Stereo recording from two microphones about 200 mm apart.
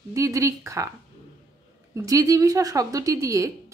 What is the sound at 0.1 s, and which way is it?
Speech, 15° right (ahead or behind).